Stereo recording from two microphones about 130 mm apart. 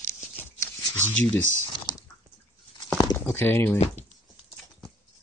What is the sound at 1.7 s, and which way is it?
Dog, 40° left (ahead or behind).